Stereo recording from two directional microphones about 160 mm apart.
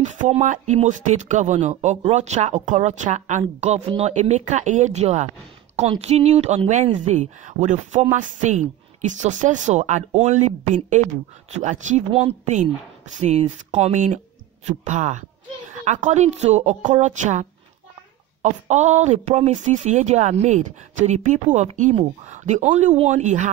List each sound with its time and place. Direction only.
0.0 s speech: 50° right (ahead or behind)